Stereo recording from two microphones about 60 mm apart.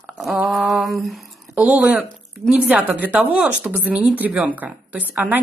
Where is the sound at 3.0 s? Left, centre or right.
Right.